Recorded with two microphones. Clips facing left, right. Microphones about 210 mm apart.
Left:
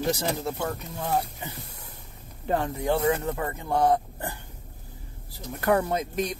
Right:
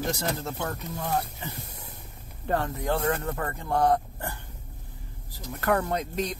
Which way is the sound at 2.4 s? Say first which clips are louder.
Left 2 dB; 15° left (ahead or behind).